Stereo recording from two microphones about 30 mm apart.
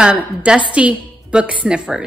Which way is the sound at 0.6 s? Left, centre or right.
Right.